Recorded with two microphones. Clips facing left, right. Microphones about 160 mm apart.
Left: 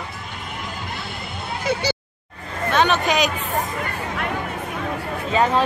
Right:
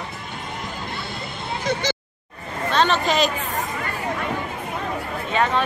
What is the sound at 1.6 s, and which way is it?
Speech, 10° left (ahead or behind).